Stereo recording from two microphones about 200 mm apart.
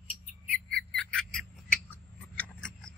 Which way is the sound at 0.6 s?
5° left (ahead or behind).